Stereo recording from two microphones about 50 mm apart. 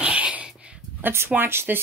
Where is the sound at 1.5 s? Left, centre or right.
Right.